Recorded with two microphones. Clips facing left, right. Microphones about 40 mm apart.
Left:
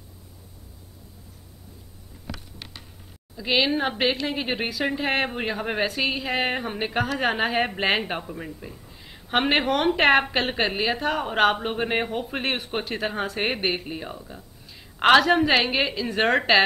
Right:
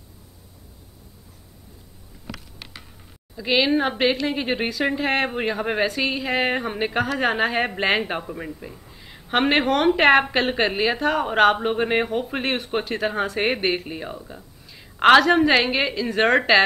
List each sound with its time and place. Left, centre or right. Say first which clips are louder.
3.3 s speech: right 3 dB; centre